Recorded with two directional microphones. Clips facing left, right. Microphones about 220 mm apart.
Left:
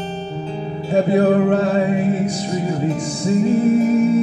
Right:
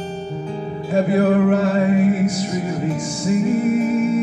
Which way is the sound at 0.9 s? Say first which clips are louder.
Left 2 dB; 30° left (ahead or behind).